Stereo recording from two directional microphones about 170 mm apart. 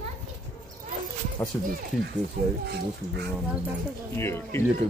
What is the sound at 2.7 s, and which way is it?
Speech, 75° right (ahead or behind).